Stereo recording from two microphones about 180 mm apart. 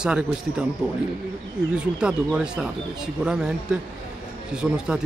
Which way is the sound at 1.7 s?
5° right (ahead or behind).